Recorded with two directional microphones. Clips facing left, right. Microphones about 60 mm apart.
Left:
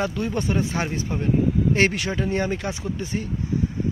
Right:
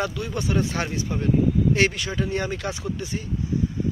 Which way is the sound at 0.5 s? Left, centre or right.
Left.